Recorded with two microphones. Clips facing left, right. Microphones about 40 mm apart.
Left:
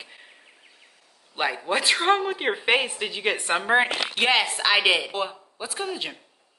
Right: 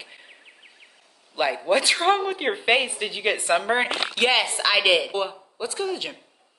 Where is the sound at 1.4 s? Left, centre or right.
Centre.